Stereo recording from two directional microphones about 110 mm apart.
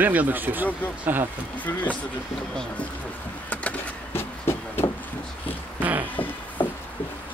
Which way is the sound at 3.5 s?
15° left (ahead or behind).